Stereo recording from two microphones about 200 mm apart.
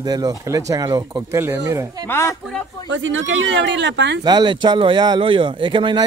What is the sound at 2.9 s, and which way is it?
Speech, 70° right (ahead or behind).